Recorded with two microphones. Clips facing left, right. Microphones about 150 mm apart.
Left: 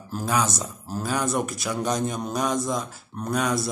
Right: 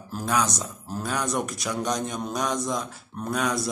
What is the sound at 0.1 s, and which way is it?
Speech, centre (ahead or behind).